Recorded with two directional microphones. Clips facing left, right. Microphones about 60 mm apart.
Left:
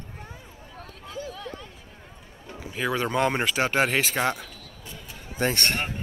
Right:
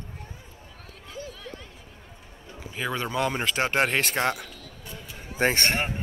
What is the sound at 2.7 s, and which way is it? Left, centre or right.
Speech, centre.